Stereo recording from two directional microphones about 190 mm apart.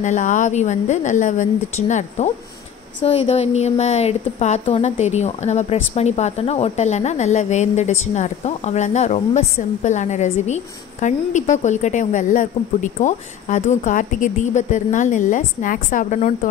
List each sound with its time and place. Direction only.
0.0 s a woman's voice: 40° left (ahead or behind)